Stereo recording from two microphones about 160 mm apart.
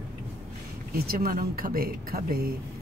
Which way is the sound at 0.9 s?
70° right (ahead or behind).